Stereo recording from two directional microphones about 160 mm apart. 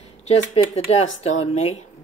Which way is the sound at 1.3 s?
45° left (ahead or behind).